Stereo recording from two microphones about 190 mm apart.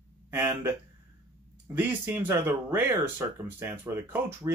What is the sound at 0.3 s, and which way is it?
Speech, 10° right (ahead or behind).